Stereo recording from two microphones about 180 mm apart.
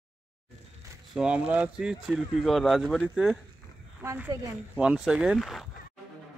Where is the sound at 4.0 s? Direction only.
15° right (ahead or behind).